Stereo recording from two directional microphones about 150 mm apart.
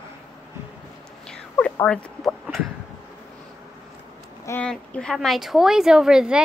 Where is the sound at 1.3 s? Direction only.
5° left (ahead or behind).